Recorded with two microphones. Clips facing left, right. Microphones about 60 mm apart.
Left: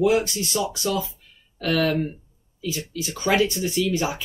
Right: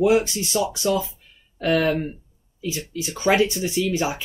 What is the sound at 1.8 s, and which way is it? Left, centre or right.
Speech, centre.